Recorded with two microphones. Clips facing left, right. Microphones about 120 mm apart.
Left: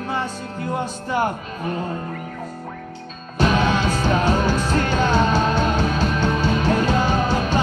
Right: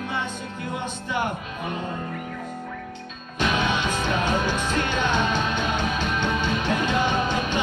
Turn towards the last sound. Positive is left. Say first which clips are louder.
# left 4 dB
turn(degrees=40)  # may be behind; listen again after turning